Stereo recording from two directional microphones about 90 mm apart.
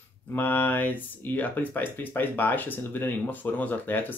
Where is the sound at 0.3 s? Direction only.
20° left (ahead or behind).